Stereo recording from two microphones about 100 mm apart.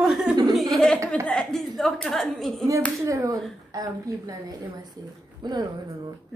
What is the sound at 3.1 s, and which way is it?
A woman's voice, 35° right (ahead or behind).